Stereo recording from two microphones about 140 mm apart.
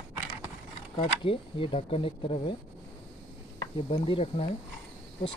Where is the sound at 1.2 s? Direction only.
40° left (ahead or behind).